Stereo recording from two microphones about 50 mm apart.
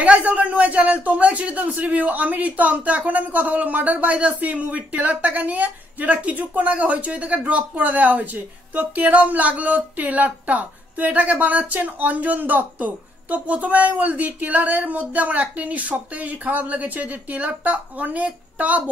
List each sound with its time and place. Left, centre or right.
0.0 s speech: right